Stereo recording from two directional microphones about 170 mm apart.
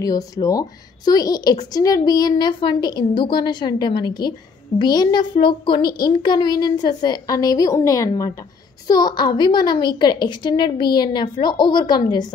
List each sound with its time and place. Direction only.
0.0 s a woman's voice: 20° left (ahead or behind)